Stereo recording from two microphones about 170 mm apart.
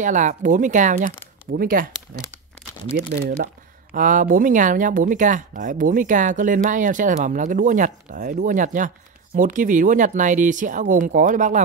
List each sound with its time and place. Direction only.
0.0 s speech: 45° right (ahead or behind)
1.5 s speech: 55° right (ahead or behind)